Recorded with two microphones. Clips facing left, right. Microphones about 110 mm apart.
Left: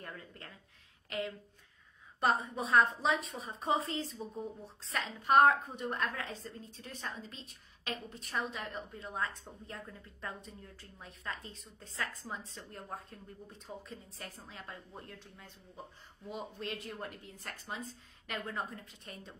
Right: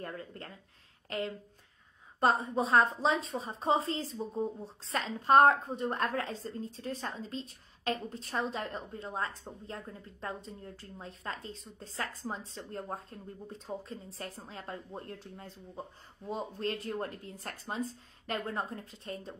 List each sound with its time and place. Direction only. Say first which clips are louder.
0.0 s a woman's voice: right 6 dB; 35° right (ahead or behind)